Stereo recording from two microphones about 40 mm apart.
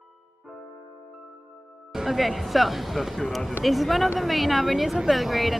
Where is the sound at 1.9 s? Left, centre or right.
Centre.